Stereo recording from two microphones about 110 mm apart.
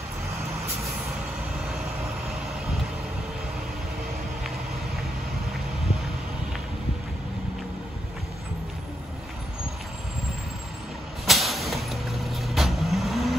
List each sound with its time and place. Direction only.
11.2 s vehicle: centre (ahead or behind)